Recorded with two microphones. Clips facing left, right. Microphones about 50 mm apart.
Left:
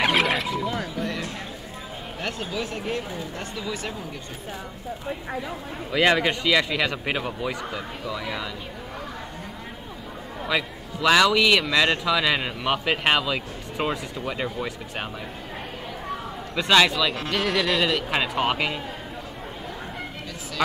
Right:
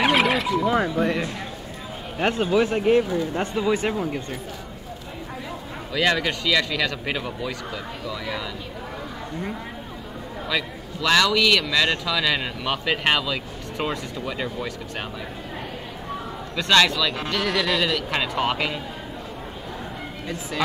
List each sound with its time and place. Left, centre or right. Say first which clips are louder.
0.0 s wild animals: right 2 dB; centre
0.7 s speech: right 7 dB; right
5.9 s speech: left 2 dB; centre
10.5 s speech: left 1 dB; centre
16.5 s speech: even; centre